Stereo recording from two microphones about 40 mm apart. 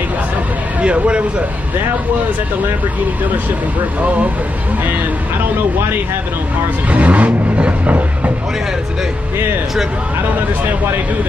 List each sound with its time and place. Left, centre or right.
0.7 s speech: right
6.9 s music: right